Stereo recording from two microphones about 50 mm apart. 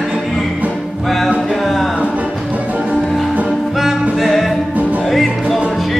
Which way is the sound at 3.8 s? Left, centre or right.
Centre.